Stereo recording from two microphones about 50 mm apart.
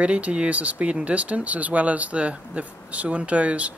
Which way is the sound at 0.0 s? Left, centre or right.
Right.